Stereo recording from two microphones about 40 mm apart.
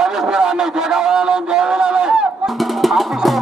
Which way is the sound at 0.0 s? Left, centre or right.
Centre.